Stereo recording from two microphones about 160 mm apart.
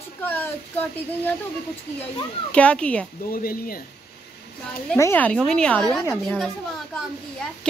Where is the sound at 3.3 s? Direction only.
65° left (ahead or behind).